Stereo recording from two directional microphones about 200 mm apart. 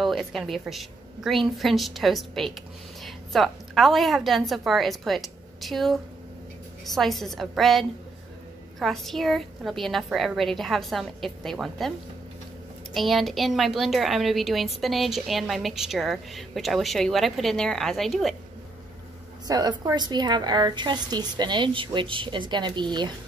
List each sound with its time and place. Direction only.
0.0 s a woman's voice: centre (ahead or behind)
12.9 s a woman's voice: centre (ahead or behind)
19.4 s a woman's voice: 20° right (ahead or behind)